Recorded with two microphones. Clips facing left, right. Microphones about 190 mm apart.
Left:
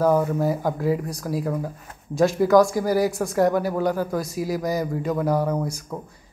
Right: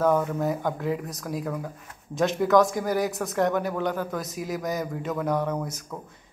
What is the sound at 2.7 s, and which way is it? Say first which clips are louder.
A man's voice: left 5 dB; 5° left (ahead or behind).